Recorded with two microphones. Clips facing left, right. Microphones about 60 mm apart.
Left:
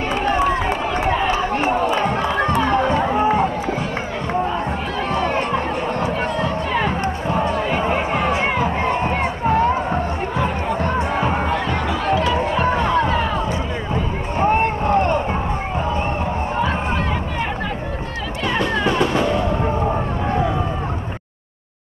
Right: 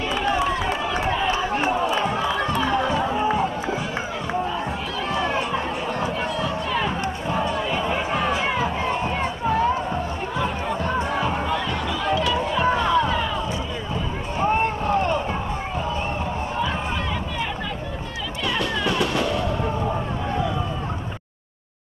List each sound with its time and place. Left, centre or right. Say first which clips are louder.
0.1 s run: left 4 dB; left
2.6 s run: left 4 dB; left
5.1 s crowd: left 3 dB; left
6.4 s music: left 4 dB; left
7.2 s a sound: left 4 dB; centre
7.5 s a sound: left 4 dB; left
11.0 s music: left 4 dB; left
12.1 s run: left 3 dB; left
14.4 s vehicle: left 4 dB; left
18.6 s music: left 5 dB; left